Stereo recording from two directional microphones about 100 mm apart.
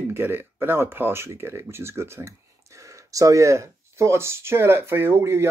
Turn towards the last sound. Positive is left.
turn(degrees=-25)  # may be behind; listen again after turning